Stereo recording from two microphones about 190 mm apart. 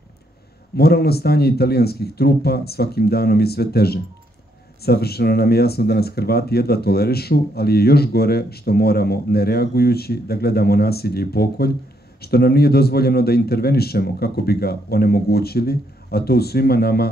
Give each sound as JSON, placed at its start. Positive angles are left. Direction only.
{"t": 0.7, "sound": "speech", "side_deg": 55}